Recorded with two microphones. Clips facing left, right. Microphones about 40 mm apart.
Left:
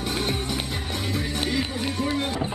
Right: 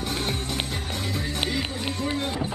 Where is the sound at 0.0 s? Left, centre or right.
Centre.